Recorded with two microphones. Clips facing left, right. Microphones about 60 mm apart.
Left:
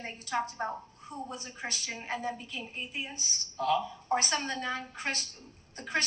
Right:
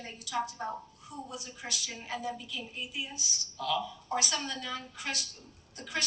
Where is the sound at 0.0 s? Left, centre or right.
Left.